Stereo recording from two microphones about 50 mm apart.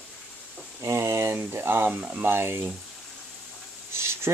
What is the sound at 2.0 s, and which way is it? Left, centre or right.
Speech, right.